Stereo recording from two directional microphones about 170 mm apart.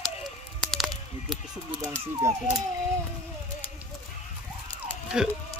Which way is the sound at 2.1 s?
15° right (ahead or behind).